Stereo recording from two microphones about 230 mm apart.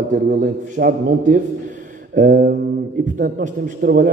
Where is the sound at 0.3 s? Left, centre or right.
Right.